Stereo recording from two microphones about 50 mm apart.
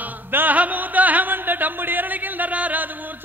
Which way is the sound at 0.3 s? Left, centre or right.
Right.